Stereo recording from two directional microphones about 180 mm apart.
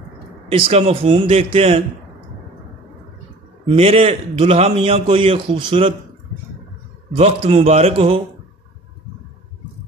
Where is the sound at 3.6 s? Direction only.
35° right (ahead or behind).